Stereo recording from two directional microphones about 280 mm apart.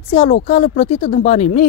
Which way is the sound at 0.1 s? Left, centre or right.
Centre.